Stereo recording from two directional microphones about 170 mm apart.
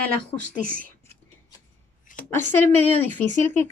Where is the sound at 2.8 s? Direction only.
10° left (ahead or behind).